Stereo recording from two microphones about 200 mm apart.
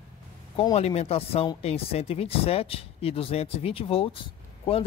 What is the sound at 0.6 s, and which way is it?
Speech, 30° left (ahead or behind).